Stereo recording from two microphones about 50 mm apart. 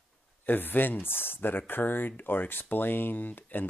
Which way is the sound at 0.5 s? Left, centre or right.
Left.